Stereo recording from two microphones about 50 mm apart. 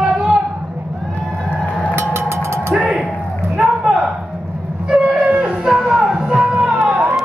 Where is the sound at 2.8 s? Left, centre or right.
Centre.